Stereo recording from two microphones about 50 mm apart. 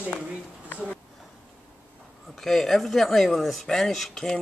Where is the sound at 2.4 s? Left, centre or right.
Centre.